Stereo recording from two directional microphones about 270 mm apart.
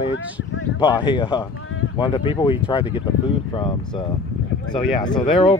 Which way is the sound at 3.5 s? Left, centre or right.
Centre.